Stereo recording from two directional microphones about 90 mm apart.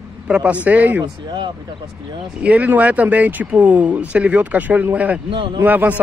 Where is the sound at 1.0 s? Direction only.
65° right (ahead or behind).